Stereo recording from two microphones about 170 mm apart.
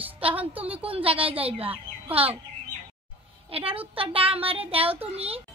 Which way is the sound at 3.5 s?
35° right (ahead or behind).